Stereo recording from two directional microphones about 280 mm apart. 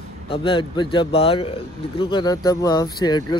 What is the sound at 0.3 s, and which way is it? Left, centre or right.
A man's voice, centre.